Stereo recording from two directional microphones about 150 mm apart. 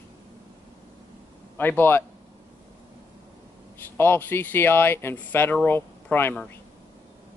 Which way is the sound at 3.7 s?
15° left (ahead or behind).